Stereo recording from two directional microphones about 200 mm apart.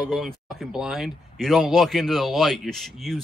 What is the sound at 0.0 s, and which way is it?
Speech, centre (ahead or behind).